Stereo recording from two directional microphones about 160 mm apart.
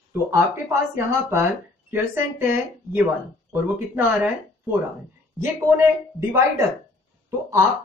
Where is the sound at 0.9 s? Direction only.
15° right (ahead or behind).